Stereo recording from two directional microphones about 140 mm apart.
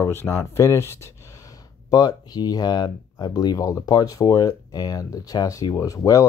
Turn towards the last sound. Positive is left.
turn(degrees=25)  # may be behind; listen again after turning